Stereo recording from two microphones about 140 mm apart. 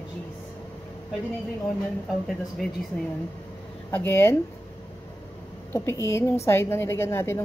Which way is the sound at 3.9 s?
15° left (ahead or behind).